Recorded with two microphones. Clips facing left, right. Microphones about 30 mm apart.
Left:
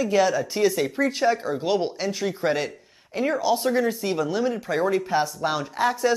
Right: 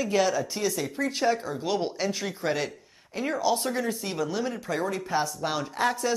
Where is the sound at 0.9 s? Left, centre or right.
Centre.